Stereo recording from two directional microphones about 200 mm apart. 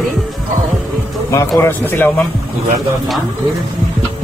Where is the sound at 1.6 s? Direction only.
10° left (ahead or behind).